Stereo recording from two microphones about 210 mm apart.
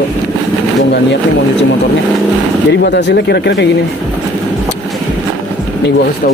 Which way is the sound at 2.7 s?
55° left (ahead or behind).